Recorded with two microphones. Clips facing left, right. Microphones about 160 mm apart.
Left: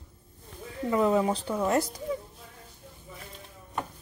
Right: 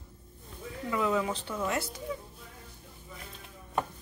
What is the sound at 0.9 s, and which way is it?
Speech, 35° left (ahead or behind).